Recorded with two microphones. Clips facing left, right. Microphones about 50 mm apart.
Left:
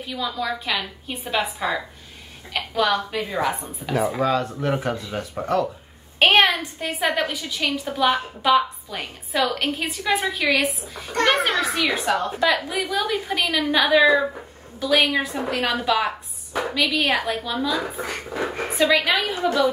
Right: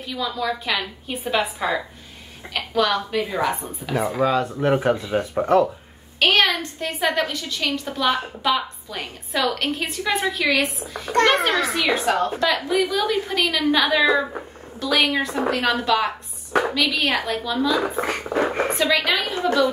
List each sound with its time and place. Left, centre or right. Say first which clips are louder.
0.0 s a woman's voice: right 1 dB; centre
4.6 s speech: right 5 dB; centre
6.1 s a woman's voice: left 2 dB; left
6.6 s a woman's voice: right 1 dB; centre
18.2 s speech: right 6 dB; right
18.7 s a woman's voice: left 1 dB; centre